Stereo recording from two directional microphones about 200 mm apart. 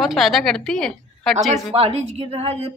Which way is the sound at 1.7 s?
30° right (ahead or behind).